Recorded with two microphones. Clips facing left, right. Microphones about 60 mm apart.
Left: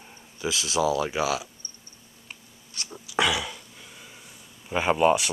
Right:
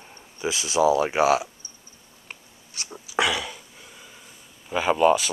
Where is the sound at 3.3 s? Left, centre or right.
Centre.